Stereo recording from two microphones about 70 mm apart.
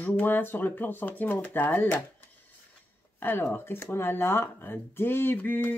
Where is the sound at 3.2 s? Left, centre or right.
Left.